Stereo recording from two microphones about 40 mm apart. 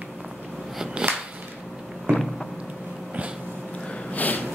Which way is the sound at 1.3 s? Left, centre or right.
Right.